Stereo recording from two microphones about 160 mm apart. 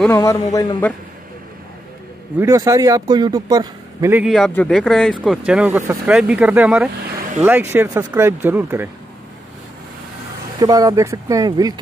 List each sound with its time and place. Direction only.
0.1 s a man's voice: 20° left (ahead or behind)
2.3 s a man's voice: 20° right (ahead or behind)
4.1 s speech: 5° right (ahead or behind)
5.5 s speech: 5° right (ahead or behind)
10.6 s a man's voice: 25° right (ahead or behind)